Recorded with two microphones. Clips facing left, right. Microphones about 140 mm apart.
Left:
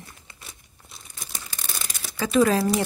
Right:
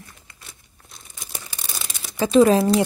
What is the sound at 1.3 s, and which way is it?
Crumpling, 10° right (ahead or behind).